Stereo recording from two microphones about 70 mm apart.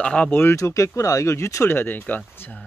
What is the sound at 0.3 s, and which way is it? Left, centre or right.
Speech, left.